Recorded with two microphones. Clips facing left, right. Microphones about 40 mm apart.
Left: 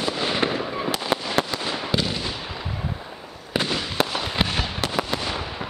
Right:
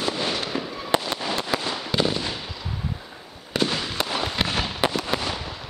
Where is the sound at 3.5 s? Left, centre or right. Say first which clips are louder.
Left 1 dB; centre.